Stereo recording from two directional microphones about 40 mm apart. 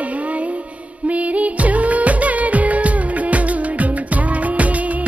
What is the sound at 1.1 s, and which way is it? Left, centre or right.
Music, right.